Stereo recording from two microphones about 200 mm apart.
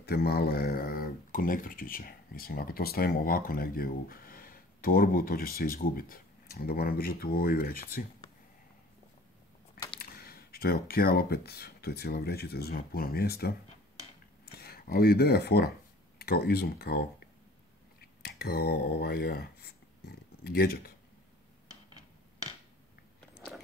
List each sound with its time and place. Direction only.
0.0 s speech: 50° left (ahead or behind)
9.9 s speech: 50° left (ahead or behind)
18.2 s speech: 50° left (ahead or behind)
23.2 s biting: centre (ahead or behind)